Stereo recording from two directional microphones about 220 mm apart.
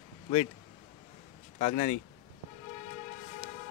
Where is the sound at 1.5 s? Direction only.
35° left (ahead or behind).